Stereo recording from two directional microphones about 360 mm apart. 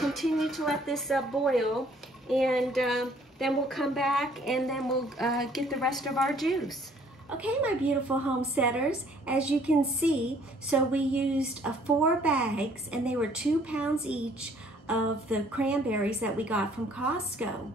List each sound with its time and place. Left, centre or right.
0.0 s a woman's voice: centre